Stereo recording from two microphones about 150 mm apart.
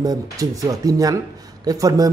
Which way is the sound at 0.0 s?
25° right (ahead or behind).